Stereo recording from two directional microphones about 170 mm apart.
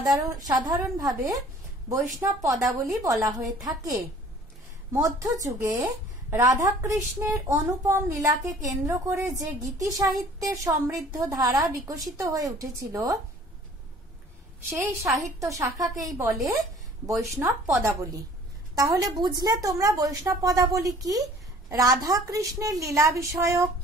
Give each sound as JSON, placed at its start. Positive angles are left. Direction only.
{"t": 0.0, "sound": "a woman's voice", "side_deg": -20}
{"t": 14.7, "sound": "a woman's voice", "side_deg": -15}
{"t": 17.4, "sound": "a woman's voice", "side_deg": -10}
{"t": 18.8, "sound": "a woman's voice", "side_deg": -20}